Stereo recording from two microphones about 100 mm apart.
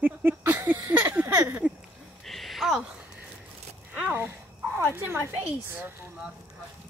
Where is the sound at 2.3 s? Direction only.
Centre (ahead or behind).